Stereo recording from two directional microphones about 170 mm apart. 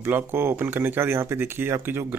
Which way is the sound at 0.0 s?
15° right (ahead or behind).